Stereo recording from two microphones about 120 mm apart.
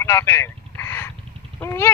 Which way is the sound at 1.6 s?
20° left (ahead or behind).